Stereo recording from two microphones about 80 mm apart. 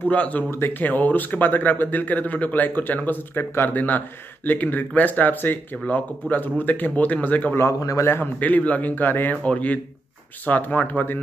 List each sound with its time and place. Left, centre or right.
0.0 s speech: centre
0.5 s speech: left
7.5 s speech: left
8.1 s speech: left